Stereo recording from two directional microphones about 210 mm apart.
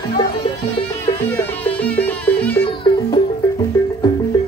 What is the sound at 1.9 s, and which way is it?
Music, 5° left (ahead or behind).